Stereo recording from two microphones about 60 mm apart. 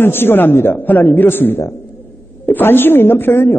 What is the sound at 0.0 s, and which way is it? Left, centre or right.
A man's voice, left.